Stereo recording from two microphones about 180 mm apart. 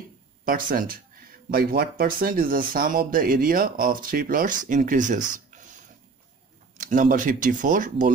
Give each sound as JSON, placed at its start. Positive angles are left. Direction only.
{"t": 0.5, "sound": "speech", "side_deg": -50}
{"t": 6.8, "sound": "speech", "side_deg": -50}